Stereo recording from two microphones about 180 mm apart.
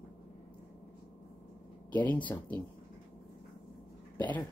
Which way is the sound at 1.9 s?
10° left (ahead or behind).